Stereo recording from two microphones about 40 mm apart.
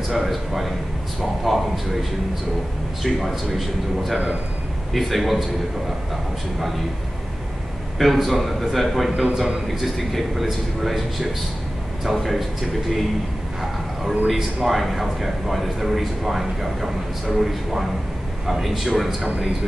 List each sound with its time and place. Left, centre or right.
0.1 s speech: centre
3.0 s speech: centre
8.0 s speech: centre
14.0 s speech: centre
19.2 s a man's voice: right